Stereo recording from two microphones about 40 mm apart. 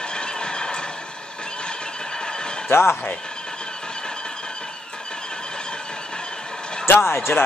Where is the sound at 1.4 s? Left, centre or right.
Left.